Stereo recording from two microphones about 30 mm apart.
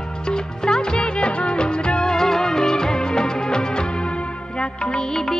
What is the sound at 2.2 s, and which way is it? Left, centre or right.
Music, centre.